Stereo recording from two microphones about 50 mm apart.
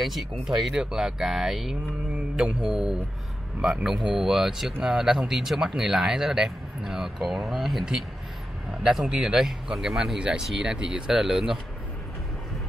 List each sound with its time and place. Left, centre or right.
0.0 s speech: centre
10.1 s speech: right